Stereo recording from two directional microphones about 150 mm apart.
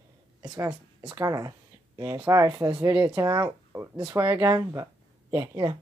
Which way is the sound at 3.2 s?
25° right (ahead or behind).